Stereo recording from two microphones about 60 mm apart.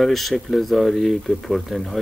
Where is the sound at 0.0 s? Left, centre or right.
Centre.